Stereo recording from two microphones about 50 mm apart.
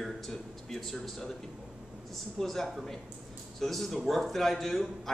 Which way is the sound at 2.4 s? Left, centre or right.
Centre.